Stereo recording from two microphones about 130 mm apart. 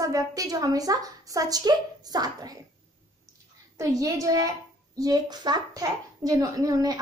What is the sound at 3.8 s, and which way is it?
A child's voice, 25° right (ahead or behind).